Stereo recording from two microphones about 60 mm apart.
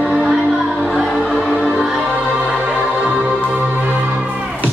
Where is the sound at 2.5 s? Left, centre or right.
Centre.